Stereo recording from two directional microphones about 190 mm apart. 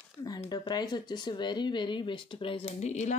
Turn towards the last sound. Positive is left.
turn(degrees=40)  # may be behind; listen again after turning